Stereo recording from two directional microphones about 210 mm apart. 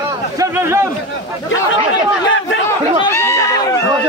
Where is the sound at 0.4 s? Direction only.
10° right (ahead or behind).